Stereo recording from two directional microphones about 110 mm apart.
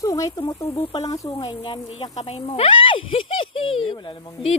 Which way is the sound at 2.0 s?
70° left (ahead or behind).